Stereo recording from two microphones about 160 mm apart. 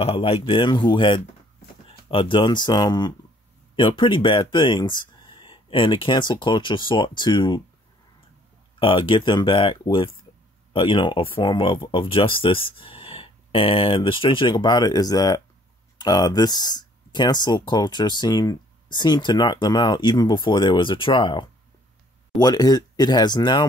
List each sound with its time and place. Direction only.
0.0 s speech: 35° left (ahead or behind)
8.7 s speech: 30° left (ahead or behind)